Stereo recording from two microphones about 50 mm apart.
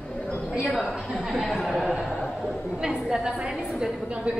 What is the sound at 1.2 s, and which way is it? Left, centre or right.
Speech, centre.